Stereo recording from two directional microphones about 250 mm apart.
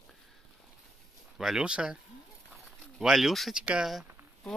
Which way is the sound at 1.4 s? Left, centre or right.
Centre.